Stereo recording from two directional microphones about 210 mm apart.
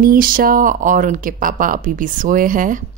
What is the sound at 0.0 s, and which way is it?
Speech, 40° right (ahead or behind).